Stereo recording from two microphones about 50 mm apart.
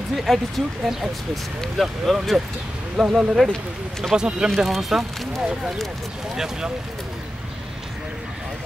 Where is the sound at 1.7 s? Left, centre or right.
Centre.